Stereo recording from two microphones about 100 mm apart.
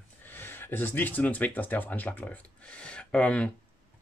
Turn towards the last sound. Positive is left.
turn(degrees=10)  # may be behind; listen again after turning